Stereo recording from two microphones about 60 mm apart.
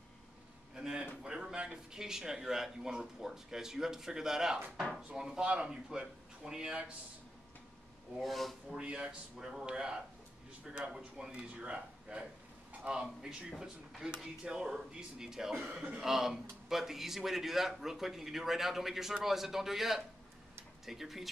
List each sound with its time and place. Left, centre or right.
0.7 s a sound: centre
1.2 s a man's voice: centre
8.2 s a man's voice: centre
8.7 s a man's voice: centre
15.7 s a man's voice: right
16.0 s a man's voice: centre